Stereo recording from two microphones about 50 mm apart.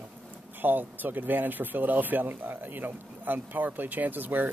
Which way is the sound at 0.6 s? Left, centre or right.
Right.